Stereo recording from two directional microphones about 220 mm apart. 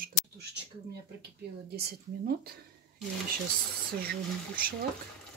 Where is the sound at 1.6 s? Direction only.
45° right (ahead or behind).